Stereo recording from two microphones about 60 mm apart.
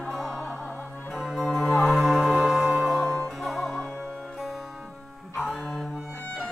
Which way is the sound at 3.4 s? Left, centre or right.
Centre.